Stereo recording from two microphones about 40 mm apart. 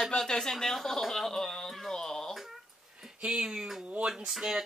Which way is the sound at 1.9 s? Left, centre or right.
Centre.